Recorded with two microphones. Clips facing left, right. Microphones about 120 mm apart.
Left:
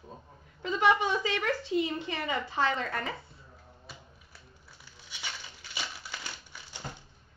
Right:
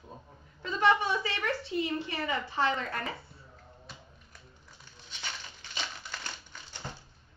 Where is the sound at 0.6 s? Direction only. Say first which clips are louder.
Left 1 dB; 15° left (ahead or behind).